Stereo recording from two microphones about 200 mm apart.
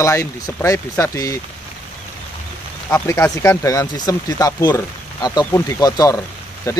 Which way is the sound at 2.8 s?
10° left (ahead or behind).